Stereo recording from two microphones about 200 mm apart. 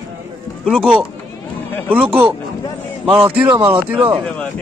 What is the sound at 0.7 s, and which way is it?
Speech, 5° right (ahead or behind).